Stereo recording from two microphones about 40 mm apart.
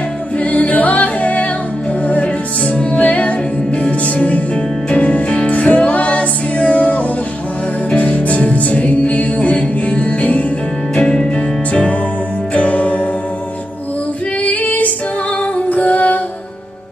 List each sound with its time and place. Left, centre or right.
0.4 s music: left
11.0 s music: centre
11.2 s music: left
14.4 s female singing: left
15.5 s music: left